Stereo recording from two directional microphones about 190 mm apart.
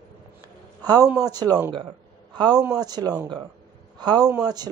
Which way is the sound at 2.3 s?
20° right (ahead or behind).